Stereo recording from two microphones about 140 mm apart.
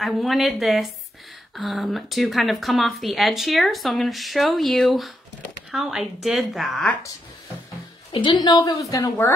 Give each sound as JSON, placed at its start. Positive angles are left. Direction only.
{"t": 0.0, "sound": "speech", "side_deg": 0}
{"t": 8.1, "sound": "a woman's voice", "side_deg": 35}